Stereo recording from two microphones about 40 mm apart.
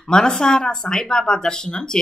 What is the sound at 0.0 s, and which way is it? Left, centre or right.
A woman's voice, centre.